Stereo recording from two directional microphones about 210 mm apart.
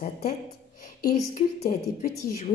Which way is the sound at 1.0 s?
40° left (ahead or behind).